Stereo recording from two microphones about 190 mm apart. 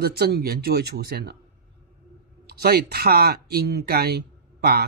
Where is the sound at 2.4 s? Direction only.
55° right (ahead or behind).